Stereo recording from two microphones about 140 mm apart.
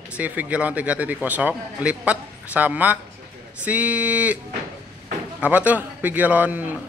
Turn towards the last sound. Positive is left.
turn(degrees=-10)  # may be behind; listen again after turning